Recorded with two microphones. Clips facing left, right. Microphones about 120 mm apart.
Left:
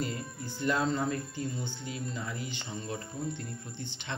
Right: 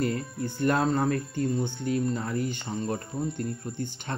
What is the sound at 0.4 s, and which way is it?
Speech, 55° right (ahead or behind).